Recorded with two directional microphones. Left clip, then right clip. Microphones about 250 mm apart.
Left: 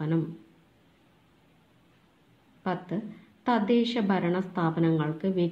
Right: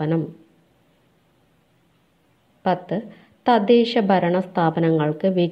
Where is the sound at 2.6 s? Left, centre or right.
Right.